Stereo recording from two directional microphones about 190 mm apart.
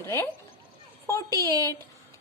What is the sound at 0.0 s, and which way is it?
Speech, 15° left (ahead or behind).